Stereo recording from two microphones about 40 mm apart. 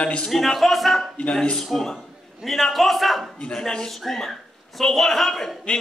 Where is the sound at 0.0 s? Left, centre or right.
Left.